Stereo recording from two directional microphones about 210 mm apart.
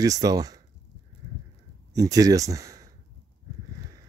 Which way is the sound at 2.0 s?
15° right (ahead or behind).